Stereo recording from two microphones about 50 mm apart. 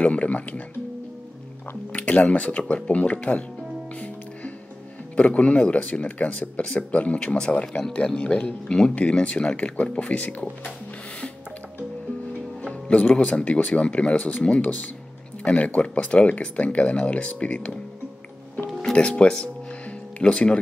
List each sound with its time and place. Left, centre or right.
0.0 s speech: left
1.9 s speech: left
5.1 s speech: left
12.9 s speech: left
18.9 s speech: centre